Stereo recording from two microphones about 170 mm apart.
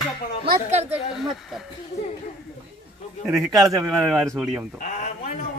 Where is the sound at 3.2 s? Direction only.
5° right (ahead or behind).